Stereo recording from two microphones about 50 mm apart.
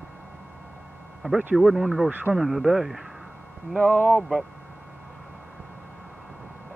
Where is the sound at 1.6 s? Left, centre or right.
Centre.